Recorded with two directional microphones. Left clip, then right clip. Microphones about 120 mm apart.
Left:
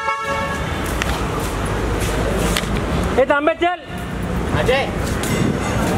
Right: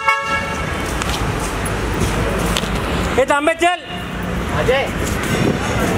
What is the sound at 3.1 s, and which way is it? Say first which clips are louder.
Speech: even; 30° right (ahead or behind).